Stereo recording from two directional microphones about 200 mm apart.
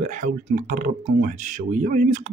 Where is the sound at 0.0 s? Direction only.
40° right (ahead or behind).